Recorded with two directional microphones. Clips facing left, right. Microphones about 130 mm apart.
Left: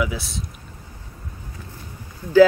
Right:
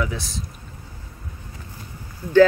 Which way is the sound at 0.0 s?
5° left (ahead or behind).